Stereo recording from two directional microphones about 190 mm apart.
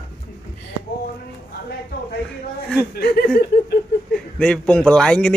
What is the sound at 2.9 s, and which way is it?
Speech, 55° left (ahead or behind).